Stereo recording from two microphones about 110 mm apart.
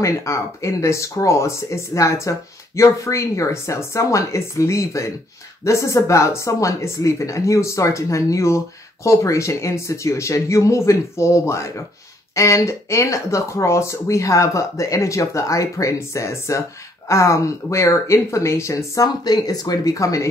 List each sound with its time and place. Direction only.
0.0 s speech: 25° left (ahead or behind)